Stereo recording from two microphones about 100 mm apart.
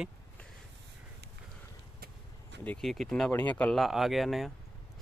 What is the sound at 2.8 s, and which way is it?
Speech, centre (ahead or behind).